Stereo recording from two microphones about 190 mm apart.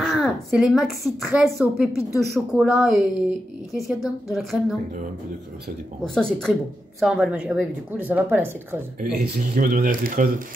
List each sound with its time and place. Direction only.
0.0 s a woman's voice: centre (ahead or behind)
6.1 s a woman's voice: 5° left (ahead or behind)
9.0 s speech: 50° right (ahead or behind)